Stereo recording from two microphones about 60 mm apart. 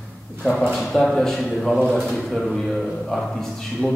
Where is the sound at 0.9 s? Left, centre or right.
Centre.